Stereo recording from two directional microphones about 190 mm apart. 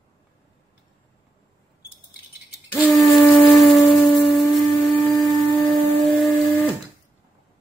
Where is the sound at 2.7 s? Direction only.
5° left (ahead or behind).